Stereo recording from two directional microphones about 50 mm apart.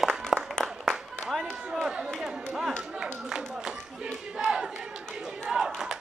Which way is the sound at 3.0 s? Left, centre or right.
Centre.